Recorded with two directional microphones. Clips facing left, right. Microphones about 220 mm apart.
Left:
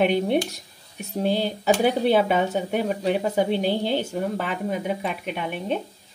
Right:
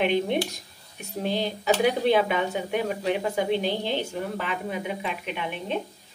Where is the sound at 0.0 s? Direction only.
40° left (ahead or behind).